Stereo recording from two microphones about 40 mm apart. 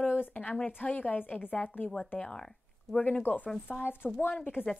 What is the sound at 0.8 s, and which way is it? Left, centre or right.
A woman's voice, left.